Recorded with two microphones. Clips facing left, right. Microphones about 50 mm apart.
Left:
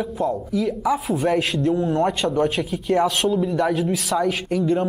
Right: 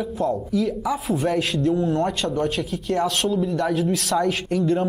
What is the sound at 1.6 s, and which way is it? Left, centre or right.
Speech, centre.